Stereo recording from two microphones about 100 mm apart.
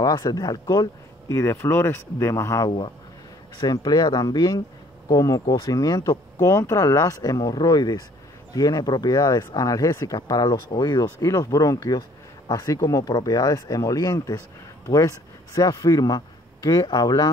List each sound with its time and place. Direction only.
0.0 s speech: 40° left (ahead or behind)
1.3 s speech: 30° left (ahead or behind)
3.6 s speech: 45° left (ahead or behind)